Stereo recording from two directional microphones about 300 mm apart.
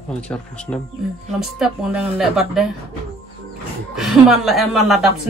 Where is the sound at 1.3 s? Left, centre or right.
Centre.